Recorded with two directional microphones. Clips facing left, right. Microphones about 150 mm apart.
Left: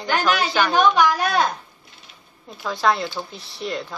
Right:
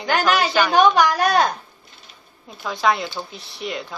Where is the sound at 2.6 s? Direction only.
Centre (ahead or behind).